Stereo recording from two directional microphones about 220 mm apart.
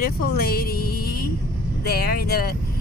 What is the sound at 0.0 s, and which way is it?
Speech, 40° left (ahead or behind).